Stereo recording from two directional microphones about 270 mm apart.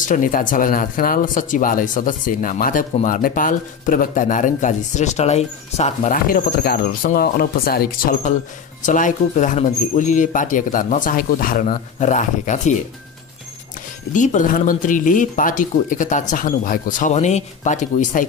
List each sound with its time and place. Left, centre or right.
0.0 s speech: left
14.1 s speech: left